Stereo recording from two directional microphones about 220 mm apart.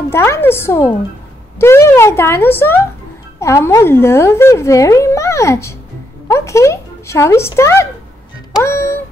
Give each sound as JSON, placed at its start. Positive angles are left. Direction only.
{"t": 0.1, "sound": "speech", "side_deg": 10}
{"t": 8.6, "sound": "music", "side_deg": 10}